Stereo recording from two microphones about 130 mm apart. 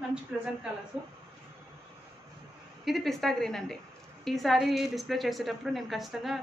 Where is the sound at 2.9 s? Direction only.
Centre (ahead or behind).